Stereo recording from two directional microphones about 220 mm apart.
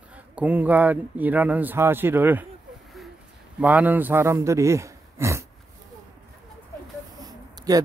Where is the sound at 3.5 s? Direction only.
5° right (ahead or behind).